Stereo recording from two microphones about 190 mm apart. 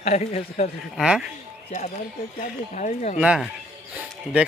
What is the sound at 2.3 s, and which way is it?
Speech, 40° left (ahead or behind).